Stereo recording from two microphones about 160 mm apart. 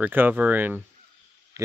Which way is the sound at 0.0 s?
10° right (ahead or behind).